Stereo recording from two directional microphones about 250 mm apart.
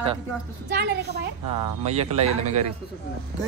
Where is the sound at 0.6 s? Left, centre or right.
Right.